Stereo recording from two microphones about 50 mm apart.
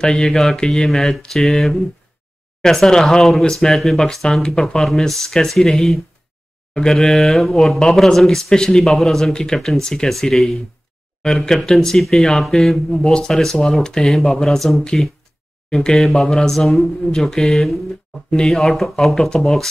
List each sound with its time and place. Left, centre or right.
0.0 s speech: centre
18.3 s speech: centre
18.6 s speech: centre